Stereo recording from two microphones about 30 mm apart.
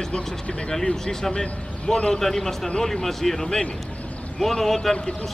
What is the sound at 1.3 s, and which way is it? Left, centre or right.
Speech, left.